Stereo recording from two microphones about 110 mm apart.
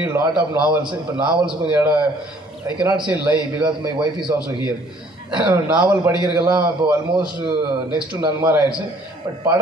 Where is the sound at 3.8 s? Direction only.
45° right (ahead or behind).